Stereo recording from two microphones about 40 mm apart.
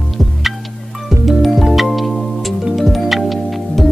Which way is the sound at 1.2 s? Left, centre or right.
Centre.